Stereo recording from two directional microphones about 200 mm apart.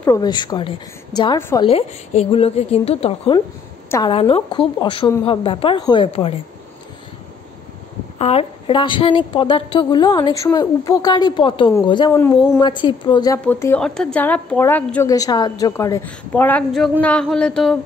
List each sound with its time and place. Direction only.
0.0 s a woman's voice: 15° left (ahead or behind)
8.2 s a woman's voice: 30° left (ahead or behind)
13.5 s a woman's voice: 10° left (ahead or behind)
17.0 s a sound: 5° left (ahead or behind)